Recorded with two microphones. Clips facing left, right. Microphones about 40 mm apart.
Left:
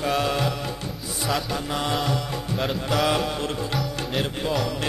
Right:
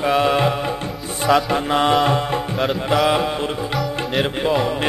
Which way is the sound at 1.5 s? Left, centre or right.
Right.